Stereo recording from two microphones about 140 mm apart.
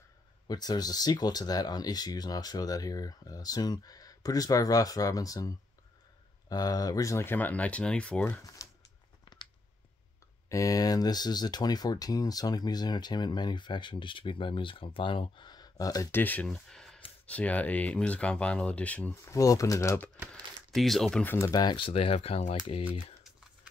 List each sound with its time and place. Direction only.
0.5 s speech: 30° left (ahead or behind)
6.5 s speech: 25° left (ahead or behind); by 8.4 s 10° left (ahead or behind)
8.6 s a sound: 20° left (ahead or behind)
9.2 s a sound: 35° left (ahead or behind)
10.5 s speech: 25° left (ahead or behind)
16.5 s a sound: 5° left (ahead or behind)
17.3 s speech: 10° left (ahead or behind)
19.3 s speech: 20° left (ahead or behind)
20.7 s speech: centre (ahead or behind)
21.4 s speech: 25° left (ahead or behind); by 22.8 s 50° left (ahead or behind)